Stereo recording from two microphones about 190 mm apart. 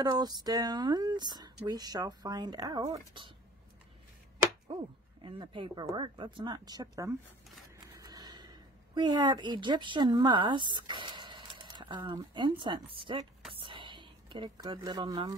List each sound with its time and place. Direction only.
0.0 s speech: 20° right (ahead or behind)
4.7 s speech: 30° right (ahead or behind)
8.0 s a sound: 20° right (ahead or behind)
12.2 s speech: 25° right (ahead or behind)
13.5 s whispering: 25° right (ahead or behind)